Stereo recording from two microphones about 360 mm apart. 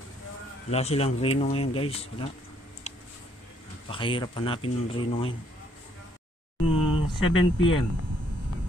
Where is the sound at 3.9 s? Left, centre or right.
Centre.